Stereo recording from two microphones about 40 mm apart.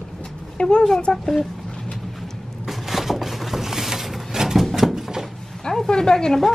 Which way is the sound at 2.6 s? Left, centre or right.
Centre.